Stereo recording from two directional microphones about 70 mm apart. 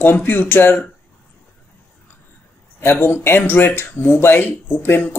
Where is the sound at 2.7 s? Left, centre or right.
Left.